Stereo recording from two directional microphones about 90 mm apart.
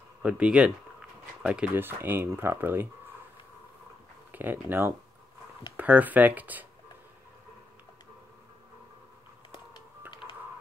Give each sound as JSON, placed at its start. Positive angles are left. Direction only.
{"t": 0.2, "sound": "speech", "side_deg": -15}
{"t": 1.8, "sound": "speech", "side_deg": -25}
{"t": 4.3, "sound": "speech", "side_deg": -20}